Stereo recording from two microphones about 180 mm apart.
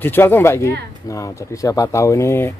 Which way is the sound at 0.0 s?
10° left (ahead or behind).